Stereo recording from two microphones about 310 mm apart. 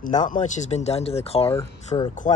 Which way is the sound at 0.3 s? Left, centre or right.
Left.